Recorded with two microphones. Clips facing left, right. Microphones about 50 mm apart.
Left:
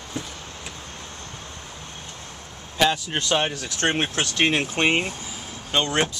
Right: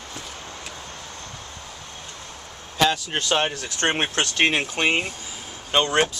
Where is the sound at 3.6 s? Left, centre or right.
Centre.